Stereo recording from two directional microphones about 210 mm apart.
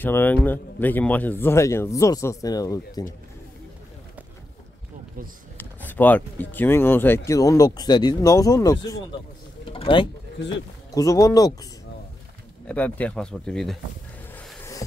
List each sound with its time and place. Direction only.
0.0 s speech: 10° left (ahead or behind)
5.6 s speech: 10° left (ahead or behind)
9.7 s a sound: 25° left (ahead or behind)
10.9 s speech: 15° left (ahead or behind)
12.6 s speech: 5° left (ahead or behind)
14.3 s a sound: 15° left (ahead or behind)